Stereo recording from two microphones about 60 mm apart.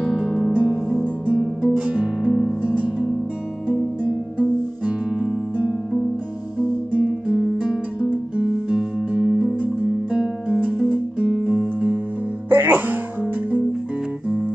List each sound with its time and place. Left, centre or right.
0.0 s music: centre
0.6 s music: right
6.9 s music: right
12.4 s music: right